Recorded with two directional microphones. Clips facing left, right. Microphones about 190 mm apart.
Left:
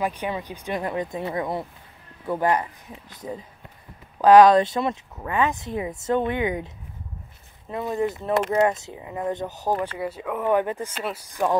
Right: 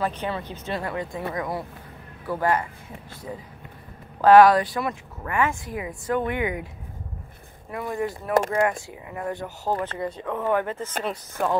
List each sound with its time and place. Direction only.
0.0 s speech: 15° left (ahead or behind)
4.2 s speech: 15° left (ahead or behind)
7.7 s speech: 20° left (ahead or behind)
9.9 s speech: 5° left (ahead or behind)